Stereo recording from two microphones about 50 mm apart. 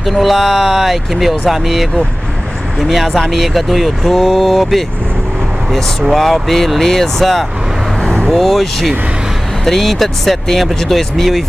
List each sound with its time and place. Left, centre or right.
0.0 s speech: centre
8.0 s vehicle: centre
8.3 s speech: centre